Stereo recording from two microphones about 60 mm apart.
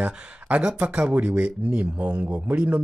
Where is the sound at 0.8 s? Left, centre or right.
Centre.